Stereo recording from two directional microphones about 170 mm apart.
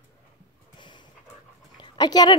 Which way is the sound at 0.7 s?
25° left (ahead or behind).